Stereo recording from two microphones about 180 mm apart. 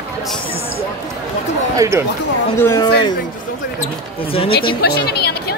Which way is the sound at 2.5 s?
15° left (ahead or behind).